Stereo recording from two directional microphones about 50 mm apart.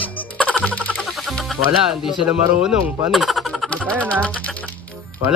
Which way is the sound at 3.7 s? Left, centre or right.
Left.